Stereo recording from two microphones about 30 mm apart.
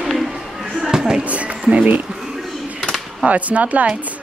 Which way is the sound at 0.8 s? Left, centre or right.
Right.